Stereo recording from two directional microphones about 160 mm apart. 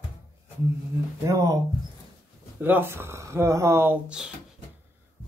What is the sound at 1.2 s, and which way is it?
Speech, 20° right (ahead or behind).